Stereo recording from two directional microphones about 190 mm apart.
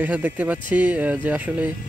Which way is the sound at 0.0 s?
10° right (ahead or behind).